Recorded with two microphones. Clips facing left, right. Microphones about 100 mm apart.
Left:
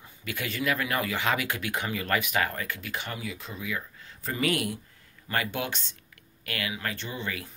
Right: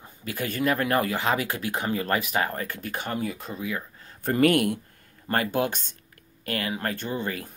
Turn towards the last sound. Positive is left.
turn(degrees=-45)  # may be behind; listen again after turning